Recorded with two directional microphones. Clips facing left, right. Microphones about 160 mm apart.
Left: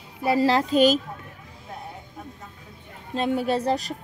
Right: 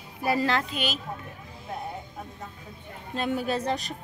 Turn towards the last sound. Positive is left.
turn(degrees=35)  # may be behind; listen again after turning